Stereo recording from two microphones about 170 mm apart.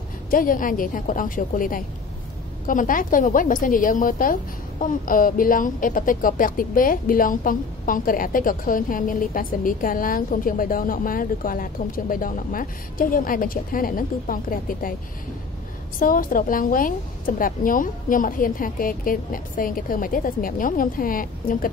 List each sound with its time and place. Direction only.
0.3 s a woman's voice: 55° left (ahead or behind)
16.0 s a woman's voice: 55° left (ahead or behind)